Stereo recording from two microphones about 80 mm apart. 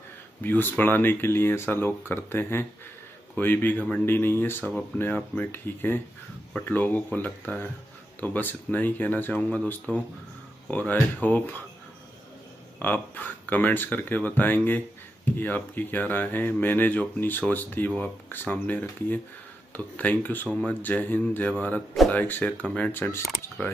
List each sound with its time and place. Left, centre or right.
0.4 s speech: left
12.7 s speech: left